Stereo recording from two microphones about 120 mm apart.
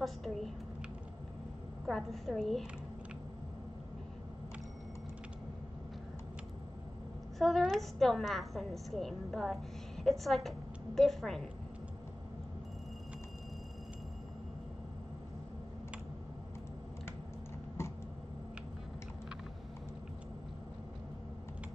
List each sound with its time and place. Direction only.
0.0 s a child's voice: centre (ahead or behind)
1.9 s a woman's voice: centre (ahead or behind)
7.3 s a woman's voice: centre (ahead or behind)
17.8 s a sound: 20° left (ahead or behind)